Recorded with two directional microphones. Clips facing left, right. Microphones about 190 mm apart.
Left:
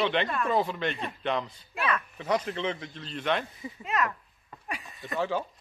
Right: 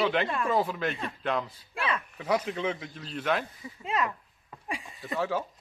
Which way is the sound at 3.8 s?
30° right (ahead or behind).